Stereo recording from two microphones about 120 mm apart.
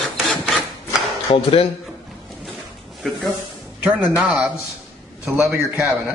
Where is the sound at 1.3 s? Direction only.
50° left (ahead or behind).